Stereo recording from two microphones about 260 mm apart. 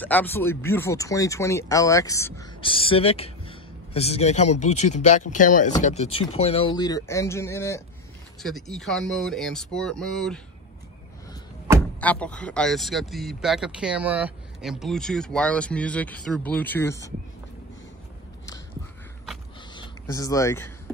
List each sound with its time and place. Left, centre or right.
0.0 s speech: centre
12.0 s speech: centre
19.7 s speech: centre